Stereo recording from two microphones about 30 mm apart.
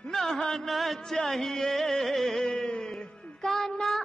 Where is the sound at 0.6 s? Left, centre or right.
Centre.